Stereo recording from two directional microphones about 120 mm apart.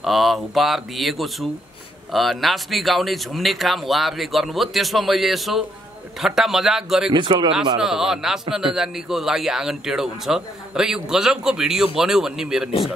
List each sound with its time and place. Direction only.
0.0 s a man's voice: centre (ahead or behind)
7.1 s speech: 40° right (ahead or behind)
7.8 s a man's voice: 5° right (ahead or behind)